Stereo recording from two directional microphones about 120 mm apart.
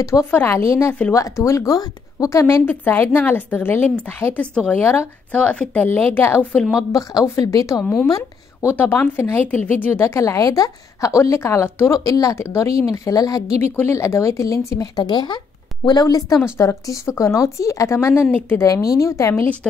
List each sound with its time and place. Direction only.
0.0 s a woman's voice: 25° left (ahead or behind)
6.6 s speech: 5° right (ahead or behind)
6.9 s a woman's voice: 30° left (ahead or behind)
8.7 s a woman's voice: 15° left (ahead or behind)